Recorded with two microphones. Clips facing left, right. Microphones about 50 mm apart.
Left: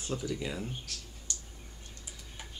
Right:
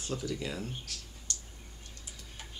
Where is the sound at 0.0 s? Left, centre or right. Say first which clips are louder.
Left 1 dB; centre.